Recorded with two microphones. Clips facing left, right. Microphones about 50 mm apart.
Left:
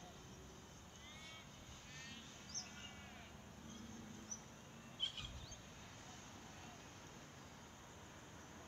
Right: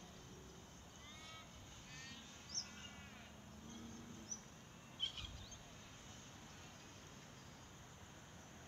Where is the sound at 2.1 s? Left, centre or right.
Left.